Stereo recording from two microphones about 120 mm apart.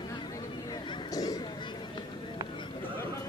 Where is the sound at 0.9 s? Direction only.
30° left (ahead or behind).